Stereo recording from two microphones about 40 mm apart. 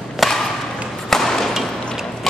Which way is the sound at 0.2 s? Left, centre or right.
Centre.